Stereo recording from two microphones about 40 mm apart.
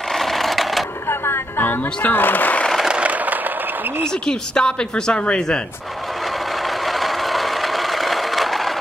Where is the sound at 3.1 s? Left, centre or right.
Right.